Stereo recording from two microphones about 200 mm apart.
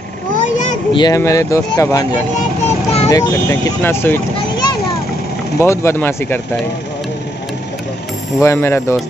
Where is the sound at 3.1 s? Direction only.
15° left (ahead or behind); by 7.5 s centre (ahead or behind).